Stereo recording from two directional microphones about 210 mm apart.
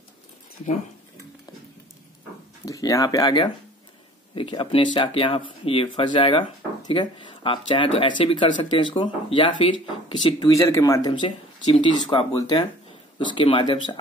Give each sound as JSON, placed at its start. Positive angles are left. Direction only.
{"t": 2.6, "sound": "speech", "side_deg": 15}